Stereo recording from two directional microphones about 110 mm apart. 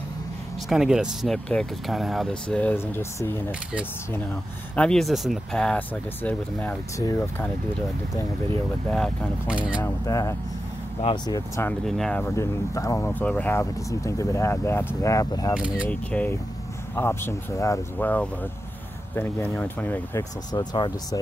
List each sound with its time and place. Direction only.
0.7 s speech: 5° right (ahead or behind)
2.4 s speech: 10° left (ahead or behind)
4.7 s speech: 5° left (ahead or behind)
8.1 s speech: 30° left (ahead or behind)
8.9 s speech: 10° left (ahead or behind)
9.5 s speech: 10° right (ahead or behind)
10.0 s speech: 35° left (ahead or behind)
11.8 s speech: 5° left (ahead or behind)
12.4 s speech: 30° left (ahead or behind)
13.1 s speech: 15° left (ahead or behind); by 15.5 s 30° left (ahead or behind)
15.5 s speech: 10° right (ahead or behind)
15.9 s speech: 15° left (ahead or behind)
17.9 s speech: 15° left (ahead or behind)
20.7 s speech: 45° left (ahead or behind)